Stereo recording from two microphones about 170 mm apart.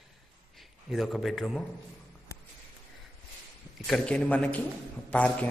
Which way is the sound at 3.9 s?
5° left (ahead or behind).